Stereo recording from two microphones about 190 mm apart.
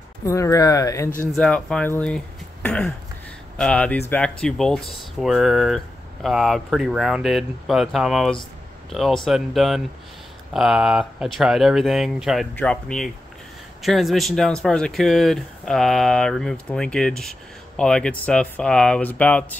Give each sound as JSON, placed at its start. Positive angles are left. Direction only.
{"t": 0.2, "sound": "speech", "side_deg": 15}
{"t": 1.3, "sound": "speech", "side_deg": 5}